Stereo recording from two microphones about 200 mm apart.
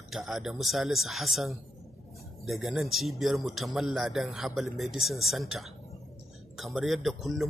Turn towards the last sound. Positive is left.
turn(degrees=0)  # may be behind; listen again after turning